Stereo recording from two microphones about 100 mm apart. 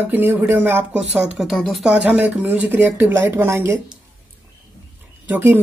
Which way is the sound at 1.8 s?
10° right (ahead or behind).